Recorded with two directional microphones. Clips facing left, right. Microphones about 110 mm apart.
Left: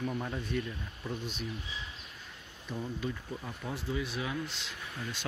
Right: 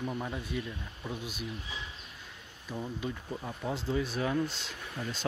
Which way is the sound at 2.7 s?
15° right (ahead or behind).